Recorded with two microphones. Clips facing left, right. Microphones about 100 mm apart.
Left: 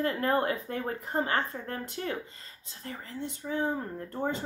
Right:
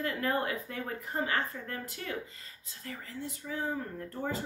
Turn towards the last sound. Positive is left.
turn(degrees=30)  # may be behind; listen again after turning